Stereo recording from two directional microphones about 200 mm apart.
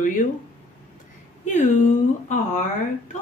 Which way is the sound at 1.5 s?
35° left (ahead or behind).